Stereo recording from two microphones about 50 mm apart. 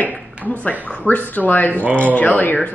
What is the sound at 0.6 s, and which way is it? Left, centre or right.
Speech, left.